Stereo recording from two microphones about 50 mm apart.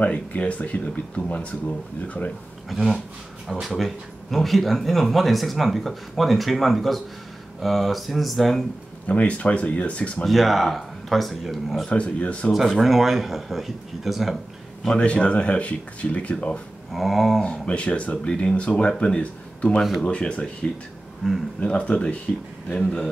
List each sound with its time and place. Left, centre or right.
0.3 s speech: left
2.7 s speech: centre
9.0 s speech: left
10.2 s speech: centre
11.9 s speech: left
12.7 s speech: centre
15.0 s speech: left
16.9 s speech: centre
17.4 s speech: left
21.2 s speech: centre
21.6 s a man's voice: left